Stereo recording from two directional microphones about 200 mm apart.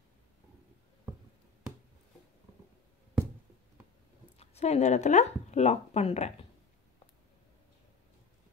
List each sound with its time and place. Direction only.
4.4 s speech: 35° left (ahead or behind)